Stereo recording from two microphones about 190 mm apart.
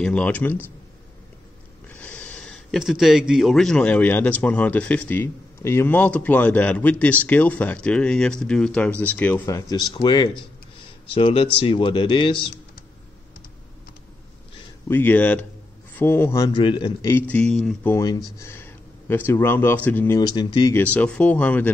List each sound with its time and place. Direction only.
0.0 s speech: 5° left (ahead or behind)
1.9 s speech: 10° left (ahead or behind)
9.7 s speech: 25° left (ahead or behind)
14.9 s speech: 10° left (ahead or behind)
17.1 s speech: 5° left (ahead or behind); by 20.7 s 25° left (ahead or behind)
20.7 s speech: 10° left (ahead or behind)